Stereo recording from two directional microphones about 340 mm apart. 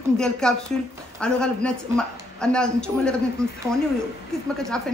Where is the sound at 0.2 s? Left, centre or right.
Centre.